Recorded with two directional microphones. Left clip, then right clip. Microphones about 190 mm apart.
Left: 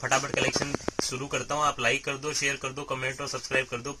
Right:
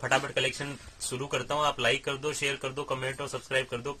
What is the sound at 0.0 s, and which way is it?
Speech, 15° right (ahead or behind).